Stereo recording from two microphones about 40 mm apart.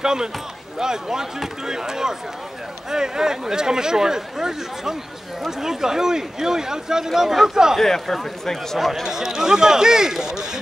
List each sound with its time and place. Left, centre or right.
0.0 s speech: centre
7.8 s speech: centre
8.7 s speech: centre